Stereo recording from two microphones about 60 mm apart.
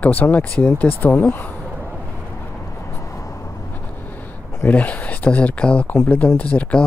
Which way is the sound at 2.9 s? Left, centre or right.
Left.